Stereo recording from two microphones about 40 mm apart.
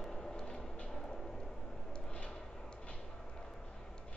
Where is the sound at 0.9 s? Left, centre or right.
Centre.